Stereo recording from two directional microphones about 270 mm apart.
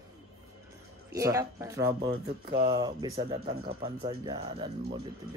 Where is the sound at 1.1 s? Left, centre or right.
Centre.